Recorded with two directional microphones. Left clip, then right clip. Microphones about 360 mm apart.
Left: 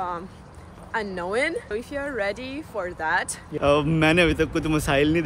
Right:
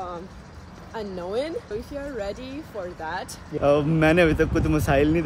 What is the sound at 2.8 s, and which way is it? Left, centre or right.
Speech, centre.